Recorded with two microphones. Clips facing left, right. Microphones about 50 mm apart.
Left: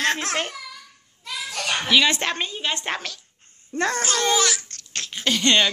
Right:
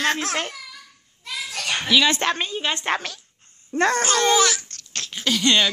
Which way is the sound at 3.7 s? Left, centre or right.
Right.